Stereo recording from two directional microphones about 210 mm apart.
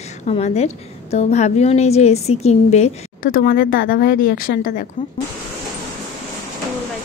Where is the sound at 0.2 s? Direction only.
30° left (ahead or behind).